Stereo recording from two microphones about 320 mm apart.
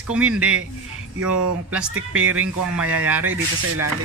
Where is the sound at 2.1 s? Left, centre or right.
Centre.